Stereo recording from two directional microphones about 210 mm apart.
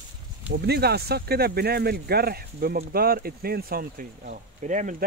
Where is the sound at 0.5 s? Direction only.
50° right (ahead or behind).